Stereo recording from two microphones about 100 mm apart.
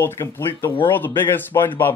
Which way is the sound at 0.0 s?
25° left (ahead or behind).